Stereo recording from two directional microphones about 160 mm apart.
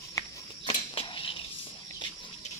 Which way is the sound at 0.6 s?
35° left (ahead or behind).